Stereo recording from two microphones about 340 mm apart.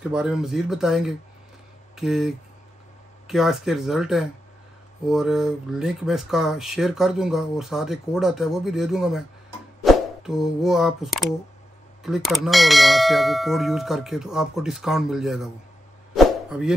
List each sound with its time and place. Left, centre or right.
0.1 s speech: centre
16.2 s dog: centre